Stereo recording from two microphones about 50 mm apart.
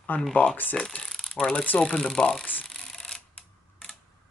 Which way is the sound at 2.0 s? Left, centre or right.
Centre.